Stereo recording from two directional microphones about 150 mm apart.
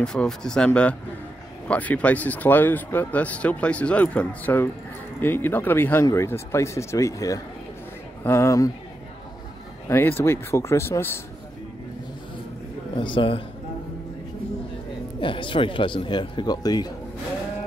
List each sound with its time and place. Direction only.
0.0 s speech: 5° left (ahead or behind); by 8.7 s 20° left (ahead or behind)
9.8 s speech: 15° left (ahead or behind)
12.9 s speech: 35° left (ahead or behind)
15.1 s speech: 35° left (ahead or behind)